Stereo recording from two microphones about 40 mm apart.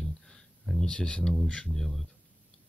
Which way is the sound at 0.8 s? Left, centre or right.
Left.